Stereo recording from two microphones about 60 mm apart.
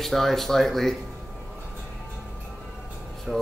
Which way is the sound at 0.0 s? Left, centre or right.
Centre.